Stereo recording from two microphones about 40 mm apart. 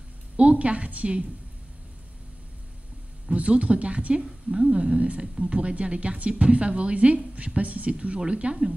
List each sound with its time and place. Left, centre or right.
0.4 s a woman's voice: right
3.3 s a woman's voice: right
5.2 s a woman's voice: right